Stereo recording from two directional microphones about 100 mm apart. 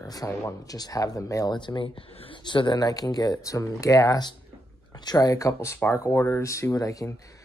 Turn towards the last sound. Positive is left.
turn(degrees=35)  # may be behind; listen again after turning